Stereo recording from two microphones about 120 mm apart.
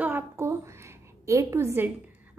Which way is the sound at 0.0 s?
20° right (ahead or behind).